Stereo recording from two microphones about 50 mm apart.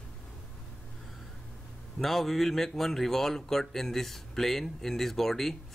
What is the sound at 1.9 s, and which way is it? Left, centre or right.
Speech, centre.